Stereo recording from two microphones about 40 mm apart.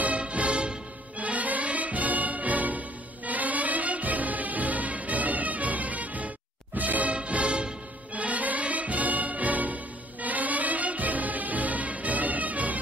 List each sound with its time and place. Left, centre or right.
0.0 s music: right